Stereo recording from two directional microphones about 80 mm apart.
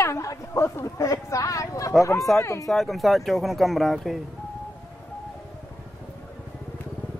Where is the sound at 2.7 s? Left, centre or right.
Centre.